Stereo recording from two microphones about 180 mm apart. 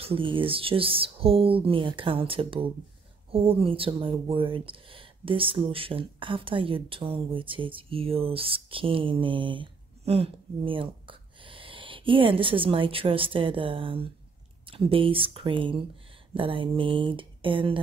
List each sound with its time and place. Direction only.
0.0 s speech: 30° right (ahead or behind)